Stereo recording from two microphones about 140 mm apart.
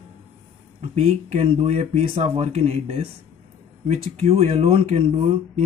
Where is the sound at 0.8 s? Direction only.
50° right (ahead or behind).